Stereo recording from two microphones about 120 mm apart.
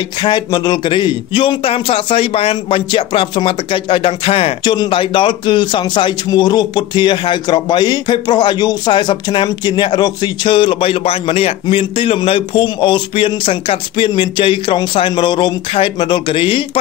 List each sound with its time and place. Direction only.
0.2 s a man's voice: 35° left (ahead or behind)